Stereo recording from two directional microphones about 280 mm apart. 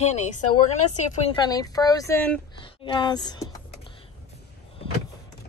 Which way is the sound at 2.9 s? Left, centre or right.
Centre.